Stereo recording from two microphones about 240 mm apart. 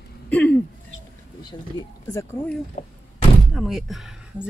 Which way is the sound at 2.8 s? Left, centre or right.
Left.